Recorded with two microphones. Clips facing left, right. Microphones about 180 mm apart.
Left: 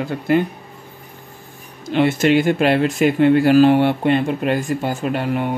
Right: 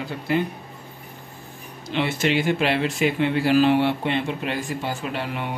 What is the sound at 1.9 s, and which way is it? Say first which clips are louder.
Speech: left 7 dB; 50° left (ahead or behind).